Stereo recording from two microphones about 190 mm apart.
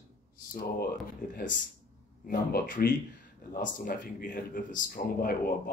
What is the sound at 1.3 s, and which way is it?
Speech, 45° left (ahead or behind).